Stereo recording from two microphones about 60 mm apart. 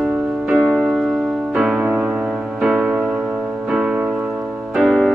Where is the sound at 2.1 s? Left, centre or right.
Centre.